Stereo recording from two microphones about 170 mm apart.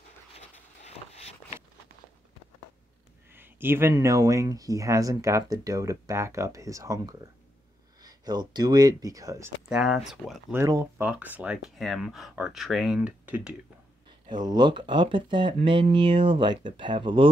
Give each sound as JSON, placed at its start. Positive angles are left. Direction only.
{"t": 0.3, "sound": "vehicle", "side_deg": 40}
{"t": 3.3, "sound": "speech", "side_deg": -10}
{"t": 9.7, "sound": "speech", "side_deg": -5}
{"t": 10.5, "sound": "speech", "side_deg": -15}
{"t": 14.3, "sound": "speech", "side_deg": -25}